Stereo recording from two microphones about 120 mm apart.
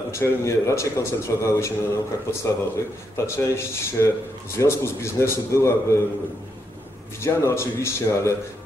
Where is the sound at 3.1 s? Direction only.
20° left (ahead or behind).